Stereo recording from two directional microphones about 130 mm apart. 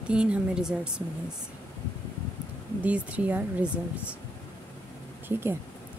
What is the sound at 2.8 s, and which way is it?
Speech, 10° right (ahead or behind).